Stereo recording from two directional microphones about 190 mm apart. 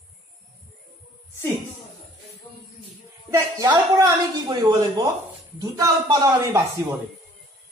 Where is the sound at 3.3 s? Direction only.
20° right (ahead or behind).